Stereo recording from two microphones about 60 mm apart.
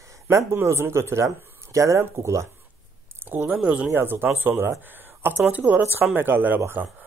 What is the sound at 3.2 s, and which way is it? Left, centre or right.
Speech, right.